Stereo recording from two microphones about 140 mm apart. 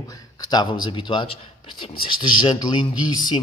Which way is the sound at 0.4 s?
30° left (ahead or behind).